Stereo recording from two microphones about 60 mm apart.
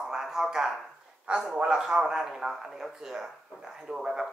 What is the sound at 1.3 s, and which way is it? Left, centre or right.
Speech, centre.